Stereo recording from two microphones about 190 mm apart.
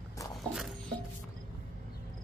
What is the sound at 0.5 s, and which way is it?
Music, centre (ahead or behind).